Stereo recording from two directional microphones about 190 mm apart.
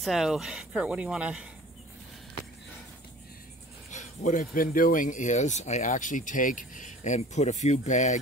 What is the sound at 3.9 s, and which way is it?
Speech, 40° left (ahead or behind).